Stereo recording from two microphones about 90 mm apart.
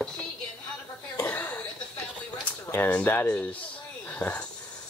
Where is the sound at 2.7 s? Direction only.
20° left (ahead or behind).